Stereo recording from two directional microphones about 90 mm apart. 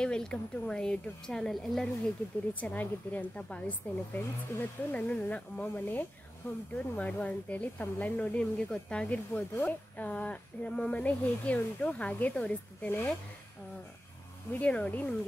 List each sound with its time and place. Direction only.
0.0 s speech: 10° left (ahead or behind)
2.6 s speech: 20° left (ahead or behind)
14.5 s speech: 15° left (ahead or behind)